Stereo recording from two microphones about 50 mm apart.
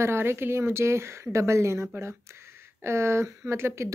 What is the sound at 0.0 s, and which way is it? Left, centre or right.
Speech, right.